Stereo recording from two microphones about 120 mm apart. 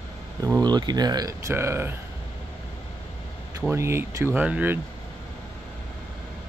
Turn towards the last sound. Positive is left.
turn(degrees=-15)  # may be behind; listen again after turning